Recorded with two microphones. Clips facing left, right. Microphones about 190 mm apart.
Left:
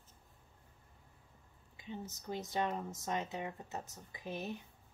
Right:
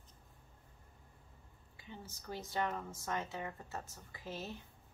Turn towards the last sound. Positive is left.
turn(degrees=15)  # may be behind; listen again after turning